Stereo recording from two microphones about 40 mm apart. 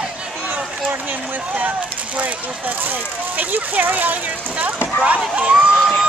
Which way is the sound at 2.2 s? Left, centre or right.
Right.